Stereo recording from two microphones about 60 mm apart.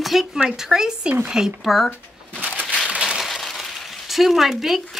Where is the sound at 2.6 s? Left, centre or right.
Centre.